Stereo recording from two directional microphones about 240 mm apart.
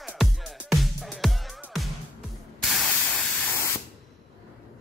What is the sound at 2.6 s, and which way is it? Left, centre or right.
Spray, centre.